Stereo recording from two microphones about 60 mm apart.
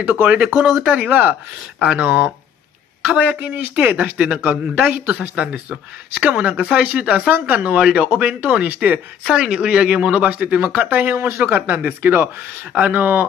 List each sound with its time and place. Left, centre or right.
0.0 s speech: right
5.3 s speech: centre
7.2 s speech: right
7.7 s speech: centre
9.2 s speech: centre; by 13.3 s right